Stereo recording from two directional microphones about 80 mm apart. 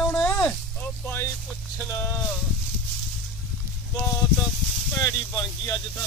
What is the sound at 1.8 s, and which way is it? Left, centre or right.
Speech, left.